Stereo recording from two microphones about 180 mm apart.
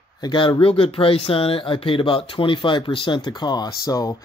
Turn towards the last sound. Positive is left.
turn(degrees=20)  # may be behind; listen again after turning